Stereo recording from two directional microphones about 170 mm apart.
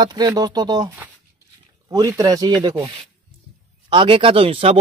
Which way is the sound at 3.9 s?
30° right (ahead or behind).